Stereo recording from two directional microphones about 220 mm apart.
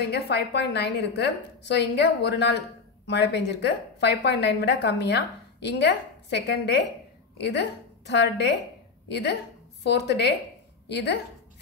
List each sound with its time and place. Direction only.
0.0 s a woman's voice: 50° left (ahead or behind)
8.1 s a woman's voice: 50° left (ahead or behind)